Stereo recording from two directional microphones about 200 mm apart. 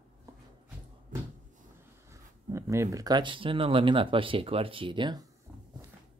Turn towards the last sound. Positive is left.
turn(degrees=-20)  # may be behind; listen again after turning